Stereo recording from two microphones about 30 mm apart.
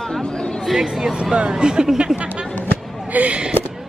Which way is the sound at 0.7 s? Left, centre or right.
Centre.